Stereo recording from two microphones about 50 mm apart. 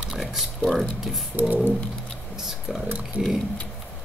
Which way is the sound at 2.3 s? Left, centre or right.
Centre.